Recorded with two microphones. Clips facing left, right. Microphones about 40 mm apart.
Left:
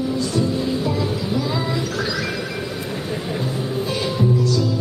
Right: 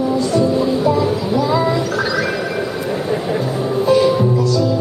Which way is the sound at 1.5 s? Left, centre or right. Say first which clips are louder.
Right 7 dB; centre.